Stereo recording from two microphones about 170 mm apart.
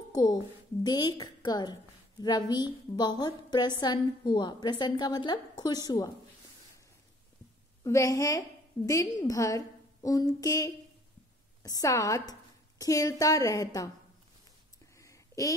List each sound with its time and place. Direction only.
0.1 s a child's voice: 25° left (ahead or behind)
7.8 s a woman's voice: 20° left (ahead or behind)
15.0 s a sound: 20° left (ahead or behind)